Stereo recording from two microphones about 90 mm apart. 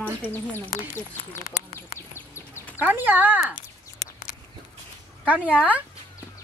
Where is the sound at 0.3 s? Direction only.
25° left (ahead or behind).